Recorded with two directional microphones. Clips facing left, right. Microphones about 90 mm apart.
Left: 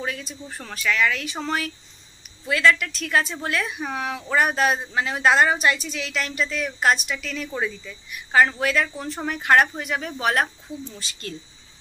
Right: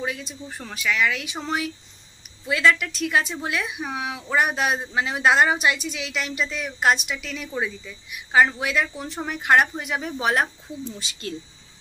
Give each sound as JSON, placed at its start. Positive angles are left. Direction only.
{"t": 0.0, "sound": "a woman's voice", "side_deg": -15}